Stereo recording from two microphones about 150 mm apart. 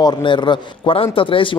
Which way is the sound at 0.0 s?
30° left (ahead or behind).